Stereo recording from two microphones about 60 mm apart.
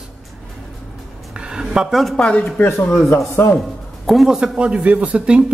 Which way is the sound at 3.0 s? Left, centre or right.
Left.